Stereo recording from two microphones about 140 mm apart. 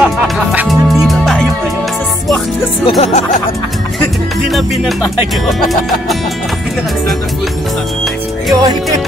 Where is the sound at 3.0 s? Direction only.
55° left (ahead or behind).